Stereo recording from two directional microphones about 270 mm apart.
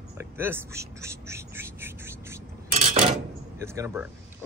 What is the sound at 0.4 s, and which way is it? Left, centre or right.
Speech, centre.